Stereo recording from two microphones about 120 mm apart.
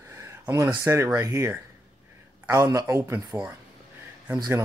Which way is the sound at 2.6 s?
25° right (ahead or behind).